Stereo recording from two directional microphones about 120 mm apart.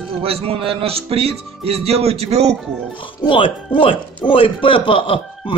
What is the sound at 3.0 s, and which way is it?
Speech, 45° left (ahead or behind).